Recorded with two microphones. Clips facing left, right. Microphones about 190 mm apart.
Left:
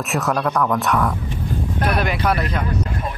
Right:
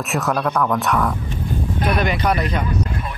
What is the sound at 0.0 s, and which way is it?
Speech, centre (ahead or behind).